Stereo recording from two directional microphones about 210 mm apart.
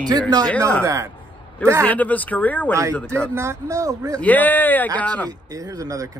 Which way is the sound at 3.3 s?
15° right (ahead or behind).